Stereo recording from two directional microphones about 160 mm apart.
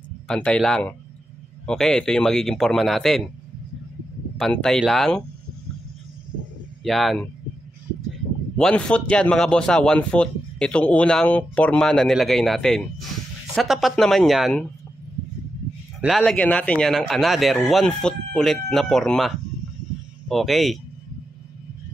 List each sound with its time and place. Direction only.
0.3 s speech: 5° left (ahead or behind)
4.4 s speech: 5° left (ahead or behind)
6.8 s speech: centre (ahead or behind)
8.5 s speech: 5° left (ahead or behind)
16.0 s speech: 5° right (ahead or behind)